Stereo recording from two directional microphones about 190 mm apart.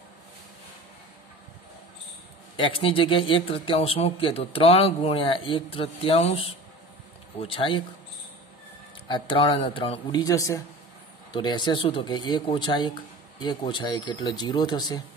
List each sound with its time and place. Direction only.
2.5 s speech: 30° left (ahead or behind)
9.0 s speech: 25° left (ahead or behind)